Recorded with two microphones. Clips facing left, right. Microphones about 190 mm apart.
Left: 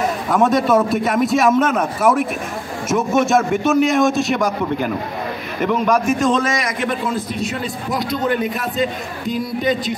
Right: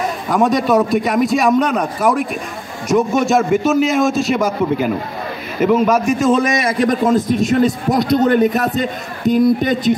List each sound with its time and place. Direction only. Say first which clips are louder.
0.3 s a man's voice: right 1 dB; centre (ahead or behind)
6.4 s a man's voice: right 5 dB; 25° right (ahead or behind); by 9.9 s 50° right (ahead or behind)